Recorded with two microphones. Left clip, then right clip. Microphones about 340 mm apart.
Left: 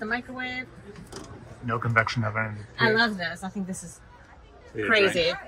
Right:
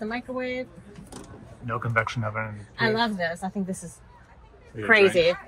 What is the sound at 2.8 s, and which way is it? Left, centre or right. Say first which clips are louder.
Speech: left 2 dB; right.